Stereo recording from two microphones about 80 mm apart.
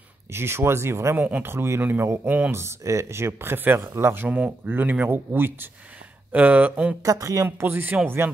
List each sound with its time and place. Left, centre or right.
0.3 s speech: right
1.1 s speech: right
2.5 s speech: right; by 7.0 s centre
7.0 s a man's voice: right
7.4 s speech: right